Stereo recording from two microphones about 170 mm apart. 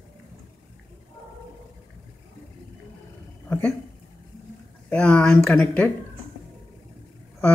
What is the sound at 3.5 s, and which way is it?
Speech, 10° left (ahead or behind).